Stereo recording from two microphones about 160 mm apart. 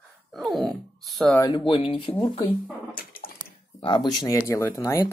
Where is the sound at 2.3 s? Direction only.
30° left (ahead or behind).